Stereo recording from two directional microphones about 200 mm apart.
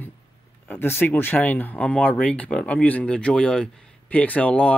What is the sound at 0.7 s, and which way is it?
Speech, 10° left (ahead or behind).